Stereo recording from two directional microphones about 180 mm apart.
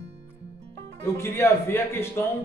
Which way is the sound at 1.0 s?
15° left (ahead or behind).